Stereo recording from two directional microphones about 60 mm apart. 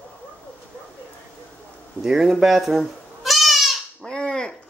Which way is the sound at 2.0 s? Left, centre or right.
Centre.